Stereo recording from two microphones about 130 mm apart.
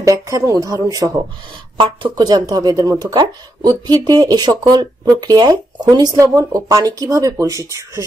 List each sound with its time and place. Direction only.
0.0 s speech: 25° right (ahead or behind)